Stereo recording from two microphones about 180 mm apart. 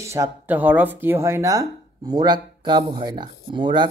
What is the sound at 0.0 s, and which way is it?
A man's voice, 15° right (ahead or behind).